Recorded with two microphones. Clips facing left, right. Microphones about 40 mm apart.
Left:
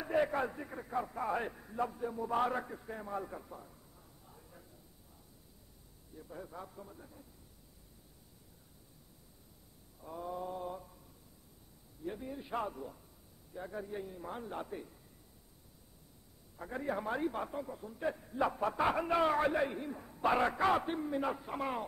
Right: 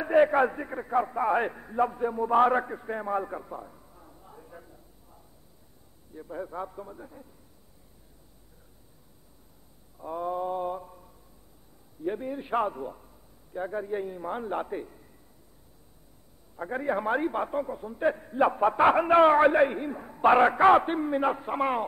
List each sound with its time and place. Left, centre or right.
0.0 s a man's voice: right
6.1 s a man's voice: right
9.9 s mantra: right
12.0 s a man's voice: right
16.5 s a man's voice: right